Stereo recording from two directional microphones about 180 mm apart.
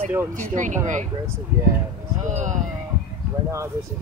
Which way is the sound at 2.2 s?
45° right (ahead or behind).